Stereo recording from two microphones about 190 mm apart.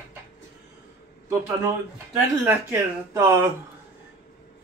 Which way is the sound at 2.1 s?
10° right (ahead or behind).